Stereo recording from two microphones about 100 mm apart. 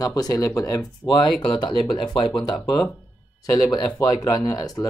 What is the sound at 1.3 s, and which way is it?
Speech, 50° left (ahead or behind).